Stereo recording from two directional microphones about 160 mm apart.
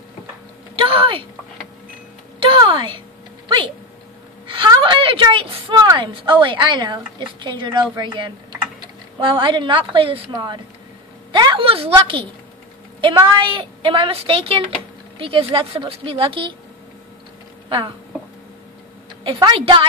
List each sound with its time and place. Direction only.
0.7 s a sound: 35° right (ahead or behind)
2.4 s a woman's voice: 30° right (ahead or behind)
13.3 s a woman's voice: 30° right (ahead or behind)
17.6 s speech: 30° right (ahead or behind)
19.2 s a woman's voice: 30° right (ahead or behind)